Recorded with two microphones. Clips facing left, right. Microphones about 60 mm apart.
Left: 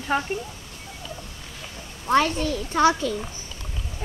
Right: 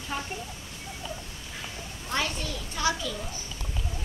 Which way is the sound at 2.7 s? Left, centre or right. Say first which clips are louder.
Left 9 dB; left.